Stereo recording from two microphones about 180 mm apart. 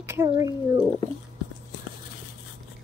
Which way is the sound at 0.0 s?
15° right (ahead or behind).